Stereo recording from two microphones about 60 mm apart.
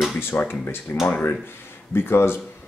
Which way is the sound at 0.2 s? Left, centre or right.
Left.